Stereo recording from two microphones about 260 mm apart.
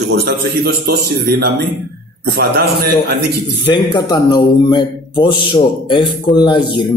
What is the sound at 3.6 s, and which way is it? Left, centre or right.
A man's voice, centre.